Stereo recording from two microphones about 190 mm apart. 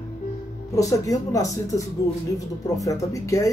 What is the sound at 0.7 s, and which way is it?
Speech, 15° left (ahead or behind).